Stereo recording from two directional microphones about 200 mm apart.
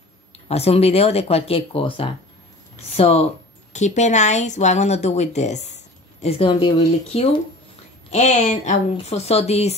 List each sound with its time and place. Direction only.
0.5 s a woman's voice: 30° left (ahead or behind)